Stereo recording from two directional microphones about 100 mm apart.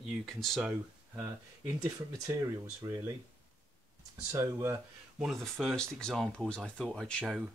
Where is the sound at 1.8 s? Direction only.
35° right (ahead or behind).